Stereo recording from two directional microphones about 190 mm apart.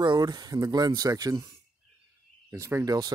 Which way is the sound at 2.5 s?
15° right (ahead or behind).